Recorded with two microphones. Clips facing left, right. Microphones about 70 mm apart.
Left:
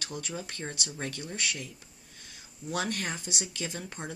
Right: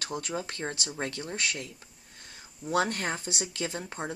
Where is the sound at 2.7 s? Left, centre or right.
Right.